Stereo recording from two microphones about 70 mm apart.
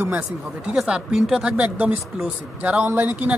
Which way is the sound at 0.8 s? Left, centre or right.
Centre.